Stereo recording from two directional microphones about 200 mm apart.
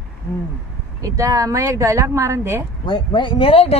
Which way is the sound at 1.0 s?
15° right (ahead or behind).